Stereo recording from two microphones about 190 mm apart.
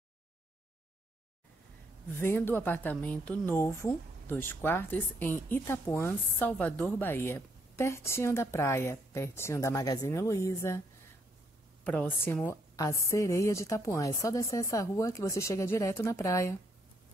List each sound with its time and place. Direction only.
2.1 s speech: 10° left (ahead or behind)
11.8 s a woman's voice: 5° left (ahead or behind)